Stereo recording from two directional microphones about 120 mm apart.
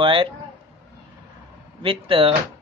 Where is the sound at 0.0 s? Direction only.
45° right (ahead or behind).